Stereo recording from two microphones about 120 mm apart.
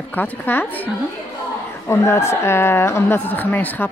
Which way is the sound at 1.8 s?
20° left (ahead or behind).